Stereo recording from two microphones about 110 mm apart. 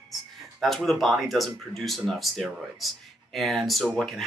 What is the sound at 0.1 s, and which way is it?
Speech, centre (ahead or behind).